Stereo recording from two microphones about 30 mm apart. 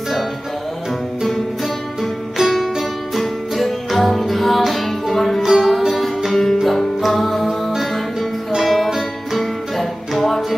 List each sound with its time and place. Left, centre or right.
3.2 s music: centre
5.4 s music: centre